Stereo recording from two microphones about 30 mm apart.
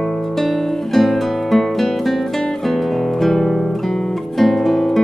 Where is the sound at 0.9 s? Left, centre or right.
Centre.